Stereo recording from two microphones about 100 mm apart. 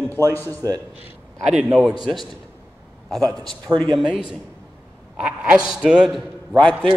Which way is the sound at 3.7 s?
20° right (ahead or behind).